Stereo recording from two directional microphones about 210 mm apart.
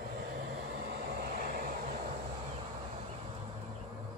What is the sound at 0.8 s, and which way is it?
Vehicle, 45° right (ahead or behind).